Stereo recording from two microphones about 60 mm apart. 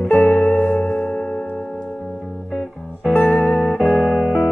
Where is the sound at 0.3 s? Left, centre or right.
Left.